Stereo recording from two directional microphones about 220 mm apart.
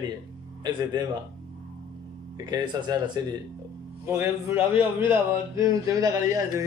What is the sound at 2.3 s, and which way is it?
Speech, 20° right (ahead or behind).